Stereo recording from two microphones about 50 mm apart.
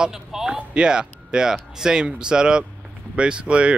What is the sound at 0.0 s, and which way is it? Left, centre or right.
Speech, centre.